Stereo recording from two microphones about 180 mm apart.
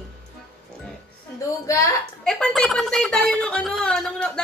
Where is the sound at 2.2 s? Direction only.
5° left (ahead or behind).